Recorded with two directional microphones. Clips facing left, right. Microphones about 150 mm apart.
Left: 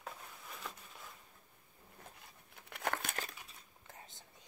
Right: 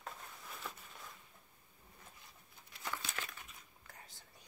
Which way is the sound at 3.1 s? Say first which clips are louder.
Left 2 dB; 35° left (ahead or behind).